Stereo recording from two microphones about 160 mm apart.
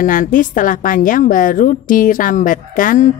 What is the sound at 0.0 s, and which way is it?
A woman's voice, 55° left (ahead or behind).